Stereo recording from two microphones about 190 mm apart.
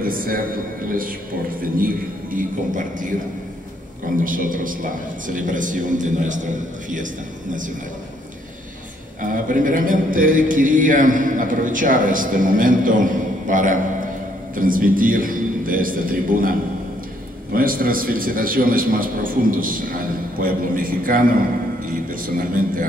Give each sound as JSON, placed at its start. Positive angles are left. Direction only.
{"t": 0.0, "sound": "a man's voice", "side_deg": -50}
{"t": 1.6, "sound": "a man's voice", "side_deg": -50}
{"t": 4.2, "sound": "a man's voice", "side_deg": -45}
{"t": 9.2, "sound": "a man's voice", "side_deg": -45}